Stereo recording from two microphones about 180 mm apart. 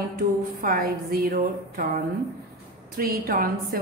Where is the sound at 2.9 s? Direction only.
50° right (ahead or behind).